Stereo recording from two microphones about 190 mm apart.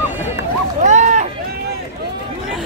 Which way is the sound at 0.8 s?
40° right (ahead or behind).